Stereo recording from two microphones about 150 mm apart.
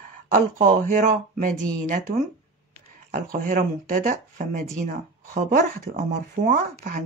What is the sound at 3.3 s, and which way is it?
Speech, 65° right (ahead or behind).